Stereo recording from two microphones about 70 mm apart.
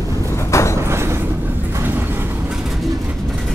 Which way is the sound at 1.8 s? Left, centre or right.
Right.